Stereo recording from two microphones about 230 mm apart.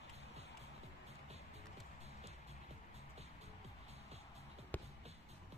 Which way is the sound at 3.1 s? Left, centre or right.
Right.